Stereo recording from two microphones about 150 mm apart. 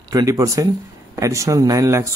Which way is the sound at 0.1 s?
20° right (ahead or behind).